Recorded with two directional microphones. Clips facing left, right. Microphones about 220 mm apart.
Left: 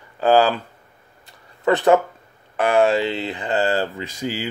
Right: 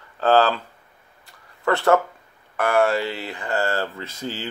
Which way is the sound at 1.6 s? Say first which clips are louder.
Left 3 dB; 15° left (ahead or behind).